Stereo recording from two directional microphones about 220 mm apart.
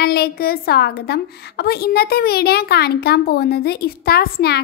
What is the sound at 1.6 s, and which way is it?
A woman's voice, 45° left (ahead or behind).